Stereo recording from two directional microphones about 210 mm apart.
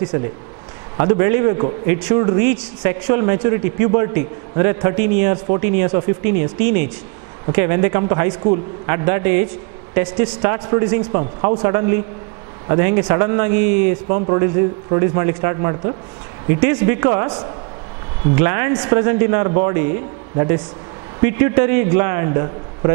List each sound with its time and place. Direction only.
0.1 s a man's voice: 15° right (ahead or behind)